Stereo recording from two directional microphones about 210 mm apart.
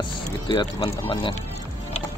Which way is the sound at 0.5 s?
20° left (ahead or behind).